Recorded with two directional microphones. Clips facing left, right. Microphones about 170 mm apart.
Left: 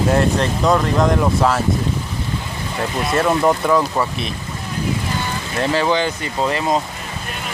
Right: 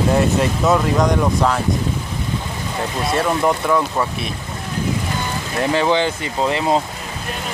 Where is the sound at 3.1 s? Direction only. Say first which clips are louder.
Left 2 dB; centre (ahead or behind).